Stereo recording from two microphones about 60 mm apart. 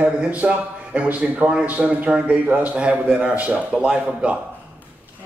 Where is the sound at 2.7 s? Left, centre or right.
Centre.